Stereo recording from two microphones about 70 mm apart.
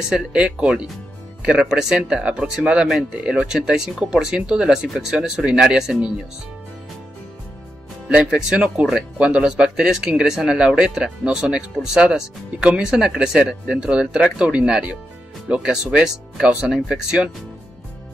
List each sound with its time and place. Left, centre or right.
0.1 s speech: centre
8.1 s speech: centre